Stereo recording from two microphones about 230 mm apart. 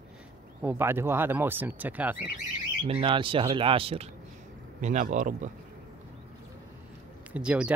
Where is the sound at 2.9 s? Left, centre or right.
Right.